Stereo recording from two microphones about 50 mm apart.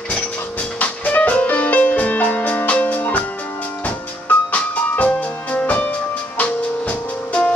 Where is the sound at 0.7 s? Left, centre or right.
Left.